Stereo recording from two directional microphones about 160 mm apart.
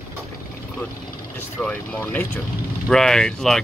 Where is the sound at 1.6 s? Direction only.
10° left (ahead or behind).